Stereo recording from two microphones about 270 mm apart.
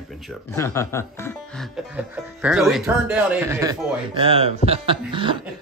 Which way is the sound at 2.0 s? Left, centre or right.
Centre.